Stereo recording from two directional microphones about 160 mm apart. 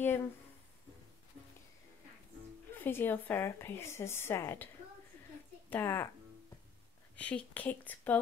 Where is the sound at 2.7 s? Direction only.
15° left (ahead or behind).